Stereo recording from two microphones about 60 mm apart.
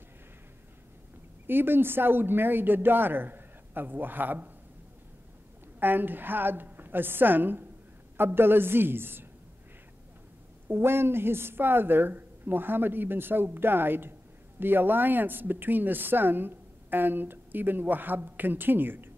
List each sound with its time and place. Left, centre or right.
1.5 s speech: right
5.8 s speech: right
10.7 s speech: right